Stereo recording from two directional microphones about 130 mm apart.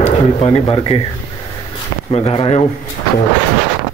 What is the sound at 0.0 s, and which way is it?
Speech, 45° left (ahead or behind).